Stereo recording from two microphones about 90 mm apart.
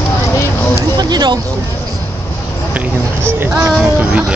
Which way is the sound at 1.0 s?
55° right (ahead or behind).